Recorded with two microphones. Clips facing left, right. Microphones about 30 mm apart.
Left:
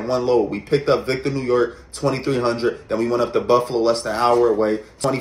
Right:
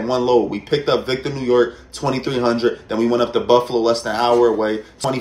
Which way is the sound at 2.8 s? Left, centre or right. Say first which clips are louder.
Right 2 dB; right.